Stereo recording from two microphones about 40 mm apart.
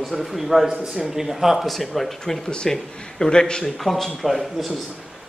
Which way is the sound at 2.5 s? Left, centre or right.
Centre.